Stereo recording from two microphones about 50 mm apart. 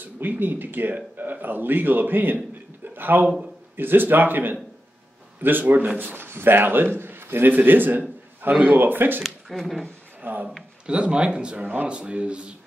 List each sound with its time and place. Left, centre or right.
0.2 s a man's voice: right
9.2 s speech: centre
10.3 s speech: right
10.9 s speech: right
11.6 s a man's voice: right